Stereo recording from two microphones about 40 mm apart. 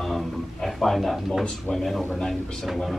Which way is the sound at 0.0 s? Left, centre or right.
Centre.